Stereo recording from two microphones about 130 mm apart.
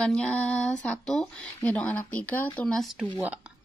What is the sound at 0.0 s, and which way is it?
Speech, 10° left (ahead or behind).